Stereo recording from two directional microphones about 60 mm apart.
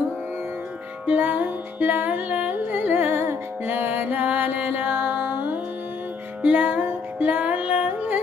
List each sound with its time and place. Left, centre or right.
1.0 s music: right
2.8 s music: right
6.4 s music: right